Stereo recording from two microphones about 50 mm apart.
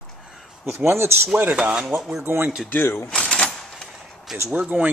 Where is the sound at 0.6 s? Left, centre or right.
Right.